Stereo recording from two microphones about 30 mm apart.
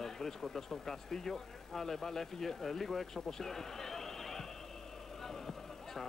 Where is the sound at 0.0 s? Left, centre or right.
Centre.